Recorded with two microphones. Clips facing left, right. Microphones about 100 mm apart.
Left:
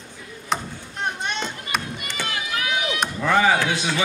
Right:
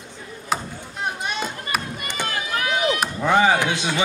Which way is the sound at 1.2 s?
5° right (ahead or behind).